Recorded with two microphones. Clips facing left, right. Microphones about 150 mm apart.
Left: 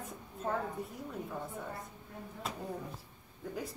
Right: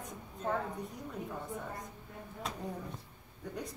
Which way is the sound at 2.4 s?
5° left (ahead or behind).